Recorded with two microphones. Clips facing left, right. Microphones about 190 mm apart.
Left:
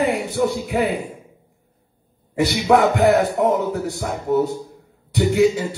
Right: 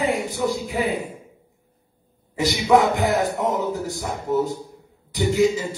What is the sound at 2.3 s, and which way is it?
A man's voice, 65° left (ahead or behind).